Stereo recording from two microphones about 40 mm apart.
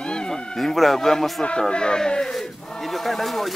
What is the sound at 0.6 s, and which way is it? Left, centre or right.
Speech, centre.